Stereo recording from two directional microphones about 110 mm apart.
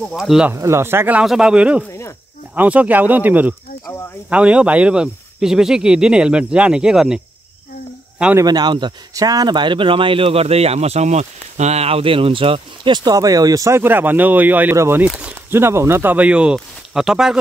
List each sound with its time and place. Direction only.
0.0 s speech: centre (ahead or behind)
0.6 s speech: 25° right (ahead or behind)
1.2 s speech: 5° right (ahead or behind)
1.9 s cricket: 25° left (ahead or behind)
2.5 s speech: 15° right (ahead or behind)
8.4 s speech: 40° right (ahead or behind)
9.1 s speech: 35° right (ahead or behind); by 17.4 s 5° right (ahead or behind)